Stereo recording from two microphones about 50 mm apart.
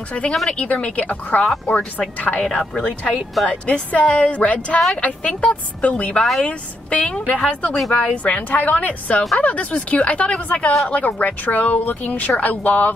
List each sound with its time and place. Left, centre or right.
0.5 s speech: left
1.4 s speech: centre
2.0 s speech: left
2.4 s speech: centre; by 12.9 s left